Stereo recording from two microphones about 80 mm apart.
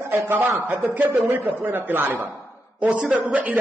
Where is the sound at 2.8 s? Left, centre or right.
Centre.